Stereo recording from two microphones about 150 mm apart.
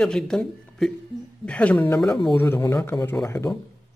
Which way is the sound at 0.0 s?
5° left (ahead or behind).